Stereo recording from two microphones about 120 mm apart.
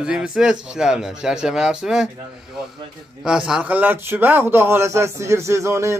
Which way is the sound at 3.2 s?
5° right (ahead or behind).